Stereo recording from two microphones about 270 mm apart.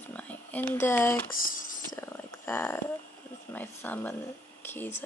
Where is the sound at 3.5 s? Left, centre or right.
Centre.